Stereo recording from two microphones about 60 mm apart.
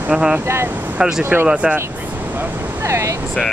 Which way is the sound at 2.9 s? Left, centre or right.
Right.